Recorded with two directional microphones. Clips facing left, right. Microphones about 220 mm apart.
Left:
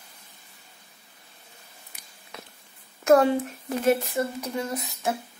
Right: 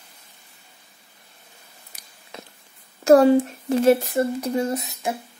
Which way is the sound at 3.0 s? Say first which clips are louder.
Right 5 dB; 30° right (ahead or behind).